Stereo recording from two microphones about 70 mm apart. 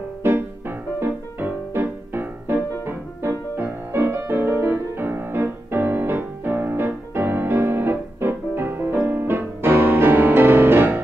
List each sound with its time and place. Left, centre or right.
0.2 s music: right